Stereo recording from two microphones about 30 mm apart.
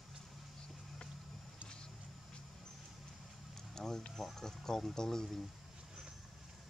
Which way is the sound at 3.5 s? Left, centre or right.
Centre.